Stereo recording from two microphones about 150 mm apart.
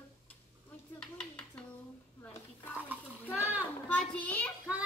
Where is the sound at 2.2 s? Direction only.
10° left (ahead or behind).